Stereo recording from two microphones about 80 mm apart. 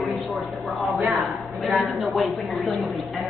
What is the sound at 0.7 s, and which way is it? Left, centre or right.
A woman's voice, centre.